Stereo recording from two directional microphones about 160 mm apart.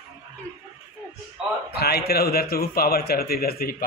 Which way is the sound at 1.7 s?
80° left.